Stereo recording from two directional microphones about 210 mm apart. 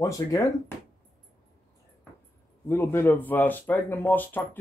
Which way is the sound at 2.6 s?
10° left (ahead or behind).